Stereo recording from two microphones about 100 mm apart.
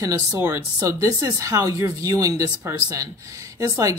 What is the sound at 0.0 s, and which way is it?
Speech, 30° right (ahead or behind).